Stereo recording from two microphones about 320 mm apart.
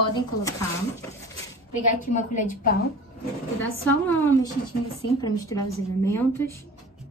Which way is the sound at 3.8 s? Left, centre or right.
Centre.